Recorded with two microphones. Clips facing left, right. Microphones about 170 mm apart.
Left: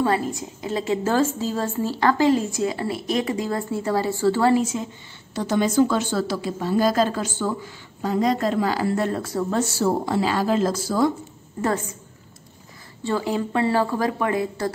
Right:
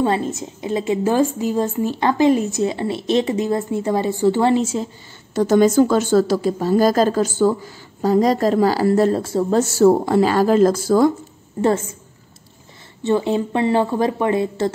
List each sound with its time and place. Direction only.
0.0 s a woman's voice: 25° right (ahead or behind)
5.3 s a woman's voice: 45° right (ahead or behind); by 9.6 s 25° right (ahead or behind)
9.6 s speech: 50° right (ahead or behind)
13.0 s a woman's voice: 25° right (ahead or behind)